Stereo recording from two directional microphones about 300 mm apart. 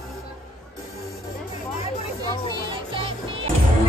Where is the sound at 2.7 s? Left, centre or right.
Centre.